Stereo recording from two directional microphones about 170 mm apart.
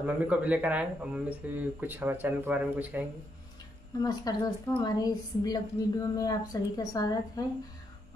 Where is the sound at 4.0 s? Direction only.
25° left (ahead or behind).